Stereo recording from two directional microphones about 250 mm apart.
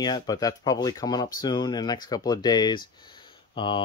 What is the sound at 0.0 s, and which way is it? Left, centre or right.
Speech, centre.